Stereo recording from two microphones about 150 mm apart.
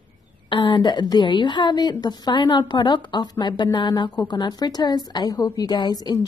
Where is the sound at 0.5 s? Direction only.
30° left (ahead or behind).